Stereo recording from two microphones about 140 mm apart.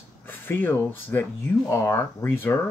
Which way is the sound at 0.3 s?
15° left (ahead or behind).